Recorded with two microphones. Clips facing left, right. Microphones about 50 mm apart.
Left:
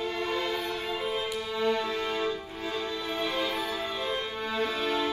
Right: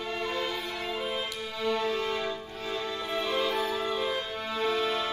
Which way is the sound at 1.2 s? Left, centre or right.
Centre.